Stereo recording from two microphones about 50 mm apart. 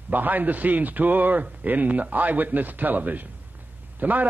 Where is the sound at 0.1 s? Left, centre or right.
Right.